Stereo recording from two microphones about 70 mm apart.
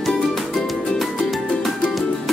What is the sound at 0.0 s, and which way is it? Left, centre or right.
Music, centre.